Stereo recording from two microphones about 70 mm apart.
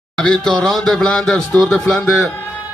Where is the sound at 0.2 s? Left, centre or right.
Centre.